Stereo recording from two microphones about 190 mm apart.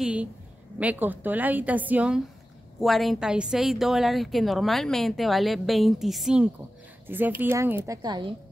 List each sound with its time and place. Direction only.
0.0 s a woman's voice: 5° right (ahead or behind)